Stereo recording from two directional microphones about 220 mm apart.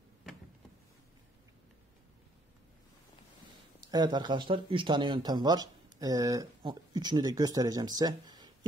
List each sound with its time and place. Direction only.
3.9 s speech: 20° right (ahead or behind)